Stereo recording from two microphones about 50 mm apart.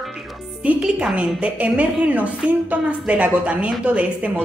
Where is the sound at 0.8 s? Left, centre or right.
Centre.